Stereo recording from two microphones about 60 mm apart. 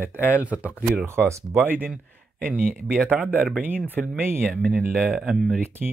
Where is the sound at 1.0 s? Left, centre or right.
Right.